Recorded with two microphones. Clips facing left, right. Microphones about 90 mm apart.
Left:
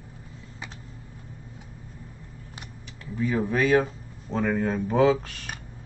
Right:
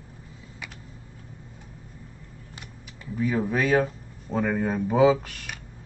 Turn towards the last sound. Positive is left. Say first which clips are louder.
# right 1 dB
turn(degrees=-5)  # may be behind; listen again after turning